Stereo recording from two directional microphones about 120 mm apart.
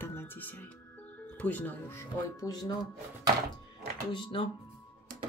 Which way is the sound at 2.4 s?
30° left (ahead or behind).